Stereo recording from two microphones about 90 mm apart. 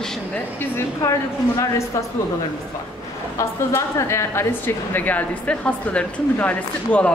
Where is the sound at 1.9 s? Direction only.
40° left (ahead or behind).